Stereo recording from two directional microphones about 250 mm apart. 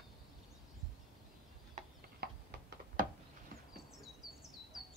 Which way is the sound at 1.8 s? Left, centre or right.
Right.